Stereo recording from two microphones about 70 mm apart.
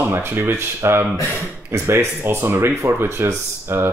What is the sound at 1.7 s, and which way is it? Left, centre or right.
Speech, right.